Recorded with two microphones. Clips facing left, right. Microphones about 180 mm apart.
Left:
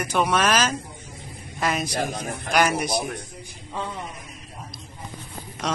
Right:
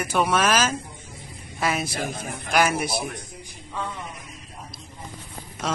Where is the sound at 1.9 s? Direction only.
50° left (ahead or behind).